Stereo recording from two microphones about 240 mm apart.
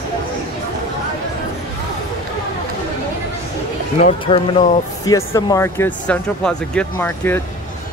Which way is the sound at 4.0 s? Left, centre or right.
Left.